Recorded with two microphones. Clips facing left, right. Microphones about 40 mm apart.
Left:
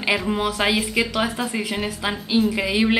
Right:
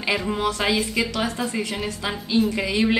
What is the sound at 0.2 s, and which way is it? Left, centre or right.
A woman's voice, centre.